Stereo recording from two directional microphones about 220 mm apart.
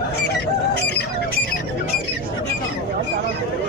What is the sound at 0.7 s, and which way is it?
Bird, 50° left (ahead or behind).